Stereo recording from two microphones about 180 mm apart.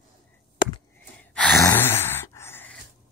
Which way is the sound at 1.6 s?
15° left (ahead or behind).